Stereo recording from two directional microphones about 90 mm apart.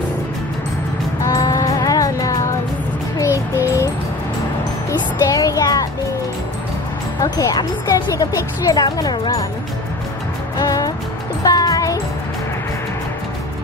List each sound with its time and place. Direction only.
1.2 s music: 40° left (ahead or behind)
3.2 s child singing: 35° left (ahead or behind)
5.2 s music: 40° left (ahead or behind)
7.2 s speech: 45° left (ahead or behind)
8.9 s speech: 55° left (ahead or behind)
10.6 s music: 40° left (ahead or behind)